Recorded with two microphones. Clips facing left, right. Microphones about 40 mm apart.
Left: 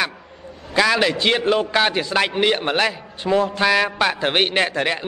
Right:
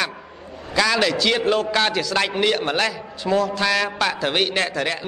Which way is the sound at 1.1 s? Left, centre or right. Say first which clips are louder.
Left 1 dB; left.